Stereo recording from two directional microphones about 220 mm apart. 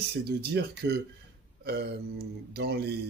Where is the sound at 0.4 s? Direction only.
50° right (ahead or behind).